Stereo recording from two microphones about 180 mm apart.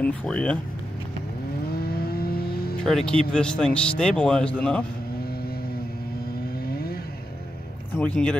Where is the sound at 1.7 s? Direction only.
60° left (ahead or behind).